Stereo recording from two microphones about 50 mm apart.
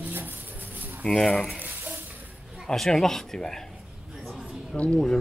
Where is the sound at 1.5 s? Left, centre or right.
Right.